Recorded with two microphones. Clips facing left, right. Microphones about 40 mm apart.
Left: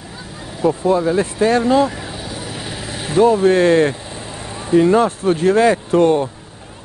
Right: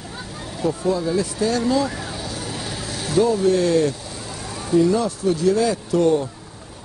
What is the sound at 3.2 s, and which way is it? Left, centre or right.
Speech, left.